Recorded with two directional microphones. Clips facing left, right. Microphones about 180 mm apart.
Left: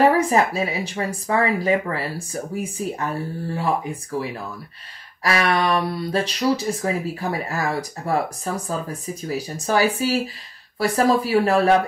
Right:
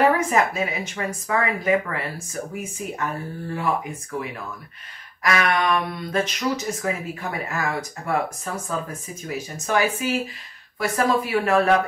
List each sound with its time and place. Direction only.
0.0 s speech: 35° left (ahead or behind)